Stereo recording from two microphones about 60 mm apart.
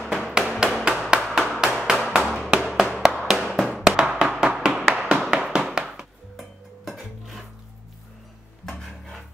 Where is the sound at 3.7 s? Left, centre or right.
Centre.